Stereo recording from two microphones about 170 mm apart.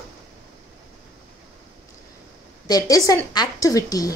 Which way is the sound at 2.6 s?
20° left (ahead or behind).